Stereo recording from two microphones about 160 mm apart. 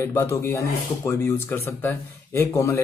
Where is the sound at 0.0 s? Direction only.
15° left (ahead or behind).